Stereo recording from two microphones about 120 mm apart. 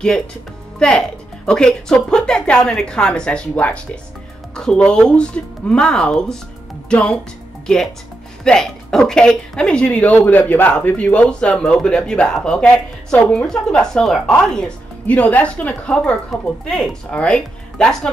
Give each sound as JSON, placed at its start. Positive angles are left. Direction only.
{"t": 0.7, "sound": "speech", "side_deg": 10}